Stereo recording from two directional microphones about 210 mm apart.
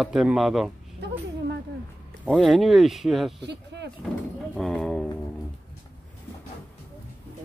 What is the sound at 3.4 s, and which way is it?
Speech, 55° right (ahead or behind).